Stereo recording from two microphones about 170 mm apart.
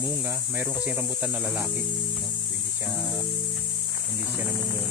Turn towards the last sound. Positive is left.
turn(degrees=-10)  # may be behind; listen again after turning